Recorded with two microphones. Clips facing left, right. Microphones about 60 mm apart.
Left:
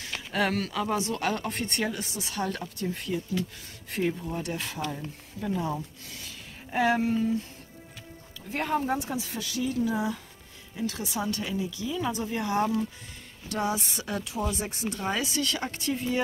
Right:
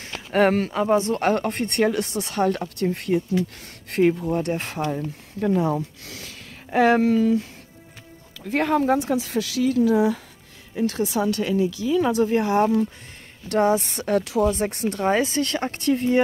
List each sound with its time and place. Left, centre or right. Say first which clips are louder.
0.0 s speech: right 9 dB; right
5.4 s speech: right 9 dB; right
8.5 s speech: right 8 dB; right
10.8 s a woman's voice: right 9 dB; right
11.2 s speech: right 9 dB; right